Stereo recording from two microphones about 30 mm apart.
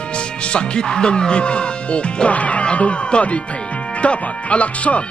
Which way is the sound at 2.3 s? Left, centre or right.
Left.